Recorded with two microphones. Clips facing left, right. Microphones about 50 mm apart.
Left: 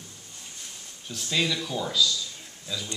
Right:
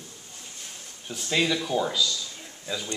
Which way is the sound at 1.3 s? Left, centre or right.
Centre.